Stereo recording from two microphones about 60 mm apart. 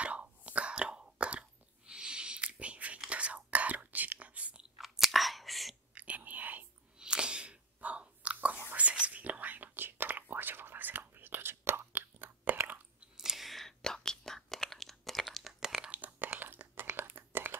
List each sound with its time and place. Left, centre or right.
0.0 s whispering: right
1.9 s a sound: centre
3.1 s chewing: right
4.7 s chewing: centre
5.9 s whispering: right
7.0 s whispering: centre; by 12.5 s right
13.2 s whispering: centre
15.8 s a sound: right